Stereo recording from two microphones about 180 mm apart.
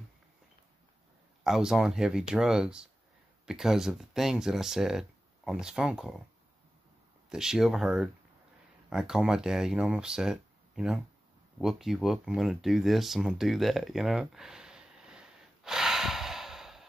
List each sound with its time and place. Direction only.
1.4 s speech: centre (ahead or behind)
7.2 s speech: 5° right (ahead or behind)
11.5 s a sound: centre (ahead or behind)